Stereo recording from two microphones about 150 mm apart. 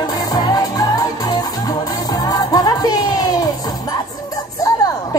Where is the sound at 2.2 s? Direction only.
25° left (ahead or behind).